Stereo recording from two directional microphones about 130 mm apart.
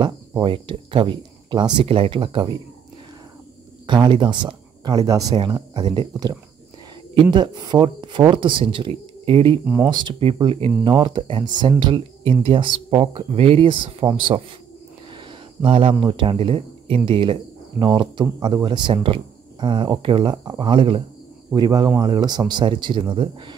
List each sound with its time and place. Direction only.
0.4 s speech: 40° right (ahead or behind)
3.8 s speech: 35° right (ahead or behind)
15.6 s speech: 40° right (ahead or behind)
21.5 s speech: 30° right (ahead or behind)